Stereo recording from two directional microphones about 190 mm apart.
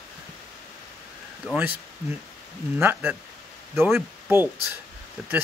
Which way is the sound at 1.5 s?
10° right (ahead or behind).